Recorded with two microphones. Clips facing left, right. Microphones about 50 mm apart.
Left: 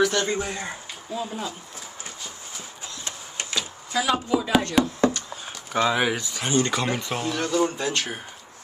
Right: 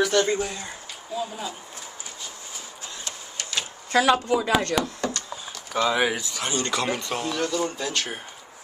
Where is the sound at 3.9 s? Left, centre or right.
Right.